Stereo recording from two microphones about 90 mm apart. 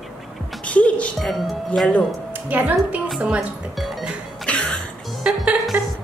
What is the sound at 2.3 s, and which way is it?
Speech, 20° right (ahead or behind).